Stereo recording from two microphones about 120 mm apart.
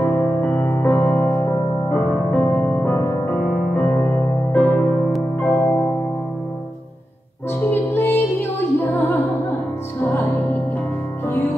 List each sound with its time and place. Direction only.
0.0 s music: 20° left (ahead or behind)
7.7 s music: 20° left (ahead or behind)